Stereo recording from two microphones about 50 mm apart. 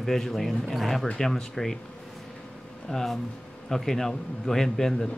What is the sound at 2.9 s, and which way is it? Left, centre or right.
Speech, centre.